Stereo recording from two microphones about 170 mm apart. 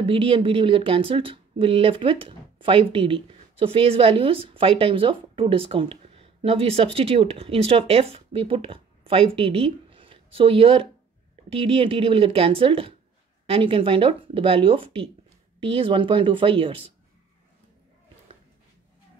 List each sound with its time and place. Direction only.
0.0 s a woman's voice: 35° right (ahead or behind)